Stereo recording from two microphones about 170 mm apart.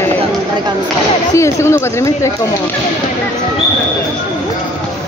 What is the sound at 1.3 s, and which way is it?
Speech, 15° left (ahead or behind).